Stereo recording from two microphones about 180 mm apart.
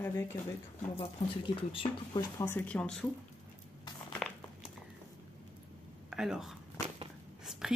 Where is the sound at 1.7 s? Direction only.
30° left (ahead or behind).